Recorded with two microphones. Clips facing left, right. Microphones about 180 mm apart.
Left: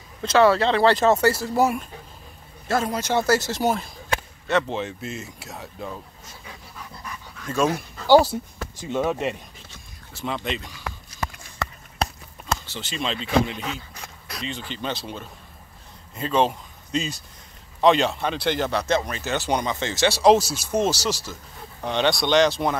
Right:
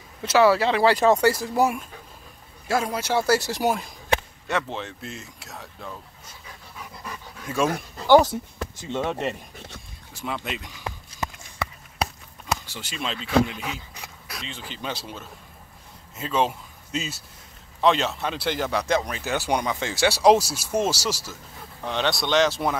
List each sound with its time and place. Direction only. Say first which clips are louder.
0.2 s speech: left 1 dB; 10° right (ahead or behind)
2.7 s speech: left 1 dB; 10° right (ahead or behind)
4.6 s speech: left 5 dB; centre (ahead or behind)
7.4 s speech: left 2 dB; 5° right (ahead or behind)
8.1 s speech: even; 10° left (ahead or behind)
10.1 s speech: left 3 dB; 5° right (ahead or behind)
10.8 s a sound: even; 25° right (ahead or behind)
11.5 s a sound: left 1 dB; 10° right (ahead or behind)
16.2 s speech: left 3 dB; 5° right (ahead or behind)